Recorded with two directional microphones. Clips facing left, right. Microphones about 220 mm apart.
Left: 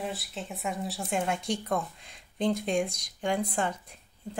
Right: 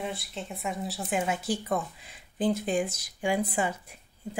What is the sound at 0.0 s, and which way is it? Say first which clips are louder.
Speech: even; centre (ahead or behind).